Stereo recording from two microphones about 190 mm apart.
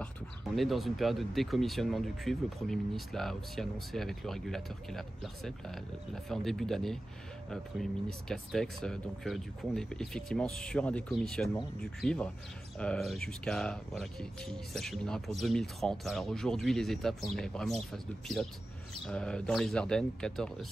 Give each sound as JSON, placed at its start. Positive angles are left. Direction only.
{"t": 0.6, "sound": "speech", "side_deg": 0}